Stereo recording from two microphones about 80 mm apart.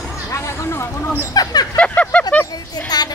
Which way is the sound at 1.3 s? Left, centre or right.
Left.